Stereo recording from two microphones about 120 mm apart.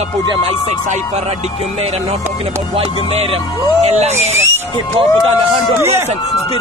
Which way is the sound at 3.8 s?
65° right (ahead or behind).